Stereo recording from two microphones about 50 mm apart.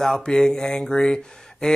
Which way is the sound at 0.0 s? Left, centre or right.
Centre.